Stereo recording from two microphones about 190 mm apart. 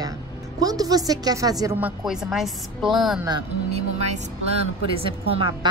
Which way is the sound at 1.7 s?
5° right (ahead or behind).